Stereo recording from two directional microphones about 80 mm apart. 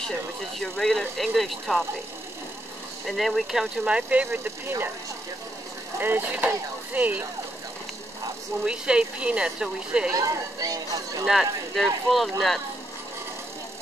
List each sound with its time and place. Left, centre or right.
0.6 s speech: centre
3.1 s speech: centre
3.8 s speech: centre
5.9 s speech: right
8.6 s speech: centre
10.1 s speech: right
11.2 s speech: centre